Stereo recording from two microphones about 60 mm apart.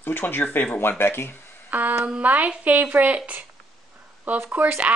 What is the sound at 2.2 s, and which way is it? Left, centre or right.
Speech, right.